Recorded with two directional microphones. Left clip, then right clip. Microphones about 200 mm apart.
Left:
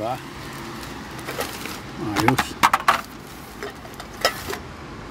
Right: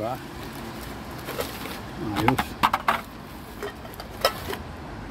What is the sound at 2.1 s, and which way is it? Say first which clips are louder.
Speech: left 4 dB; 15° left (ahead or behind).